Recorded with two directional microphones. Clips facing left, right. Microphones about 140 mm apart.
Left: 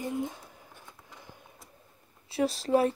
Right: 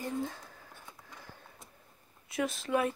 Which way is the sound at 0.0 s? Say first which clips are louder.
Left 3 dB; 20° left (ahead or behind).